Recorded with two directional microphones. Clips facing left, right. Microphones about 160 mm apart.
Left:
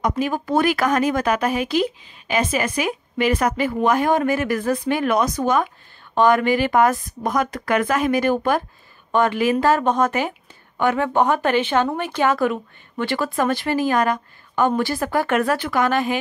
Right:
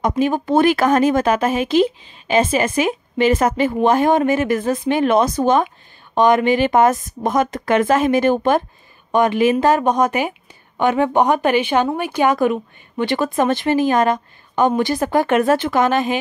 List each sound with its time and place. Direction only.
0.0 s speech: 25° right (ahead or behind)